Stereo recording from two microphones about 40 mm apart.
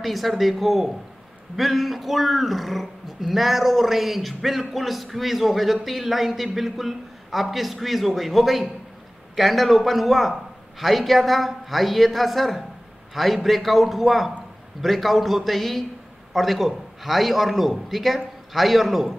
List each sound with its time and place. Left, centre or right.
0.0 s speech: centre